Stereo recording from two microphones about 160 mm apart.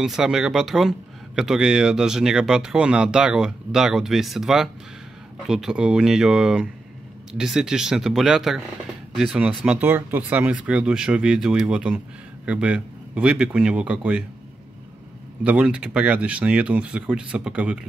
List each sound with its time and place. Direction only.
0.0 s speech: 5° right (ahead or behind)
15.4 s speech: 5° right (ahead or behind)